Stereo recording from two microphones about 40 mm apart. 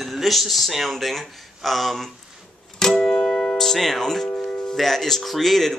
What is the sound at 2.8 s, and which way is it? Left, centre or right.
Music, centre.